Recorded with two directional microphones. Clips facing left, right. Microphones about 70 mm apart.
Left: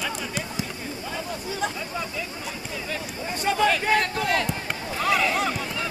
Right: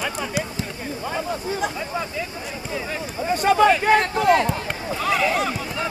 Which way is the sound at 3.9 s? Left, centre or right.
Right.